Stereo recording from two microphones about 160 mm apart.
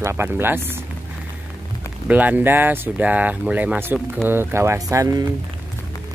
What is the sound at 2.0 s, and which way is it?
Speech, 10° right (ahead or behind).